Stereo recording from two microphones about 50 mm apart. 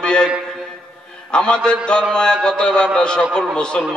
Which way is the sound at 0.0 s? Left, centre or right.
Centre.